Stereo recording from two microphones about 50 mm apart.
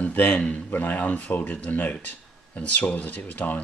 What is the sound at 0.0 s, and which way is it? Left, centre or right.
A man's voice, left.